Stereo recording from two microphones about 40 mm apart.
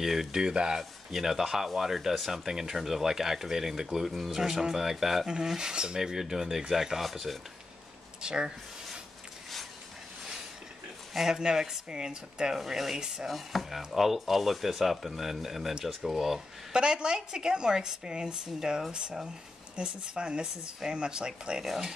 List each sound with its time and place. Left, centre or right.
0.0 s speech: centre
0.7 s speech: centre
5.9 s speech: centre
8.2 s speech: centre
11.1 s speech: centre
12.5 s speech: centre
16.7 s speech: right